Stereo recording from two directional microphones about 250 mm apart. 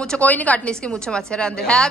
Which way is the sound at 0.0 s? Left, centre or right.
Centre.